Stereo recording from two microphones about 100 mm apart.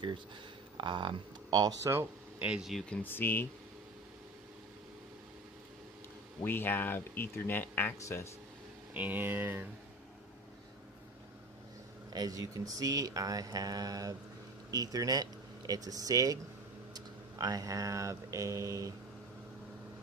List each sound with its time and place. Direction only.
0.7 s speech: 55° right (ahead or behind)
1.6 s speech: 40° right (ahead or behind)
1.9 s speech: 25° right (ahead or behind)
2.4 s speech: 5° right (ahead or behind)
2.8 s speech: 10° left (ahead or behind)
3.1 s speech: 20° left (ahead or behind)
6.4 s speech: 20° left (ahead or behind)
8.9 s speech: 15° right (ahead or behind)
12.1 s speech: 40° right (ahead or behind)